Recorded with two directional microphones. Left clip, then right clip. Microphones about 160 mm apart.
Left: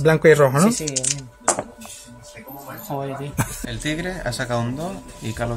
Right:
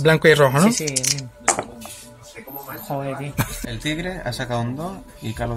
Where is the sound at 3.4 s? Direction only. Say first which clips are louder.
Even; centre (ahead or behind).